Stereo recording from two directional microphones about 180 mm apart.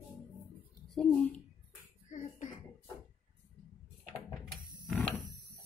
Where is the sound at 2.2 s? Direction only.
45° left (ahead or behind).